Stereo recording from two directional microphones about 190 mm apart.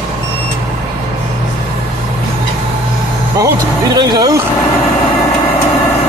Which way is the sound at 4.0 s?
20° right (ahead or behind).